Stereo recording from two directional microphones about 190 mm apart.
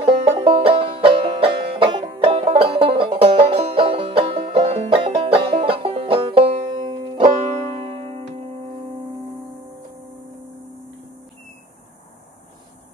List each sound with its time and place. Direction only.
0.0 s music: 30° right (ahead or behind)